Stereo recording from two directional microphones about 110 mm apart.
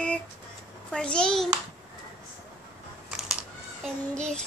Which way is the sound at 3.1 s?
5° right (ahead or behind).